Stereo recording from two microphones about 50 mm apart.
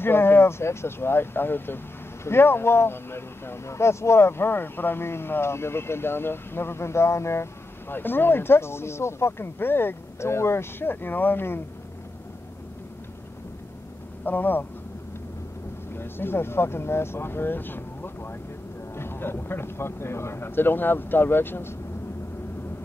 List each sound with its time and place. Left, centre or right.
0.0 s speech: left
7.9 s speech: left
14.2 s speech: left
16.0 s speech: left